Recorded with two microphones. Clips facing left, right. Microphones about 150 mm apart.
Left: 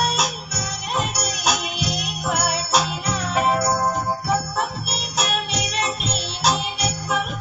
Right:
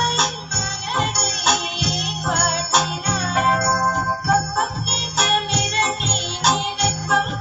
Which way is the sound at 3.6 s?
20° left (ahead or behind).